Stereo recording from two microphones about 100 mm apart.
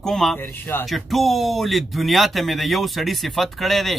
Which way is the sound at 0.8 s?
Centre (ahead or behind).